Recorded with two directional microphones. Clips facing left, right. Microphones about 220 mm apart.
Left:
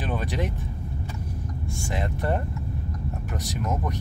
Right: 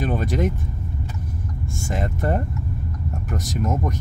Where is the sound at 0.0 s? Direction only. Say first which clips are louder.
Right 6 dB; 45° right (ahead or behind).